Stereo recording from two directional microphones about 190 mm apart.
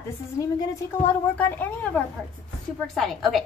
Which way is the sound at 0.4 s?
15° left (ahead or behind).